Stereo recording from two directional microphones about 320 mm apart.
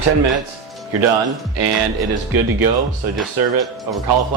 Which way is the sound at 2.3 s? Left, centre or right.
Right.